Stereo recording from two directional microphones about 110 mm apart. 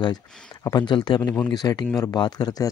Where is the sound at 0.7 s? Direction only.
40° left (ahead or behind).